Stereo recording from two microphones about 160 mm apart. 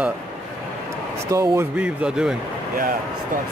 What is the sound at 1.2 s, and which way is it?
Speech, 15° right (ahead or behind).